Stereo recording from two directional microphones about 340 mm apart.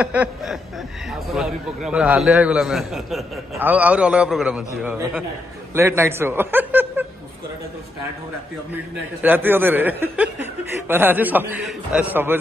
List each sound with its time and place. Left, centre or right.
0.0 s a man's voice: centre
9.2 s a man's voice: centre